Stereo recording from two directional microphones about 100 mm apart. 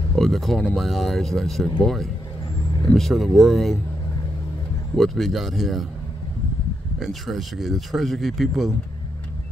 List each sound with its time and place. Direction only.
0.1 s speech: centre (ahead or behind)
2.9 s speech: centre (ahead or behind)
4.9 s speech: centre (ahead or behind)
7.0 s speech: centre (ahead or behind)